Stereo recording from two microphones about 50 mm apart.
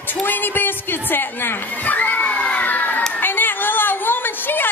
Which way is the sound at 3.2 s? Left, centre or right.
Left.